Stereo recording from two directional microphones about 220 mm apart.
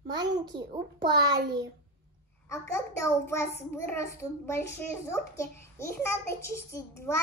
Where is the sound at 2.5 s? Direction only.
10° left (ahead or behind).